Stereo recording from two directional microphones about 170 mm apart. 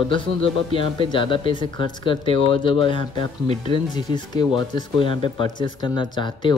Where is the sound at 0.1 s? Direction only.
30° left (ahead or behind).